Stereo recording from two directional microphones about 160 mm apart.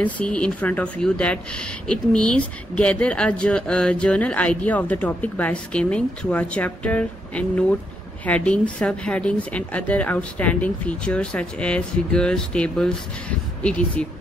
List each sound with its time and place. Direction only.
0.0 s speech: 5° left (ahead or behind)